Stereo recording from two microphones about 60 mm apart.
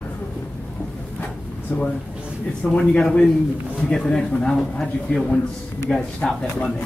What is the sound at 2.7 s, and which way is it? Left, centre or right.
A man's voice, centre.